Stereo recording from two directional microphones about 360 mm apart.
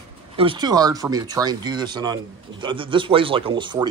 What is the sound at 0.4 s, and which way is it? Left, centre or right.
Speech, centre.